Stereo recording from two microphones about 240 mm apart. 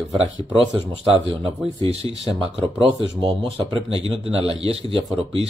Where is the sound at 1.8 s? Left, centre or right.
Right.